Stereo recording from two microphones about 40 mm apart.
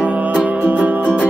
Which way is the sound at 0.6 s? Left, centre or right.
Right.